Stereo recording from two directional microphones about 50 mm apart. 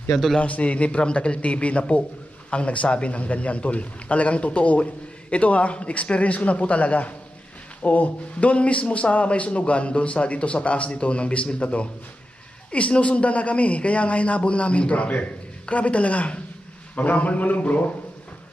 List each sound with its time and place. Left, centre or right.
0.4 s a man's voice: left